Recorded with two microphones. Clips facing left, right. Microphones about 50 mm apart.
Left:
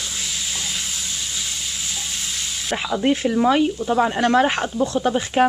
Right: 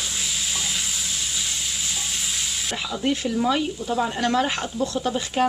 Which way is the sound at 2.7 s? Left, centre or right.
Left.